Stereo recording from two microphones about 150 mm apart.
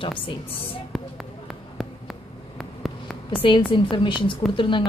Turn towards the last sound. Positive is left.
turn(degrees=35)  # may be behind; listen again after turning